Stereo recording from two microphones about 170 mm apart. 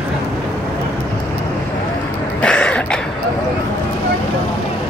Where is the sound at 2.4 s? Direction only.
5° left (ahead or behind).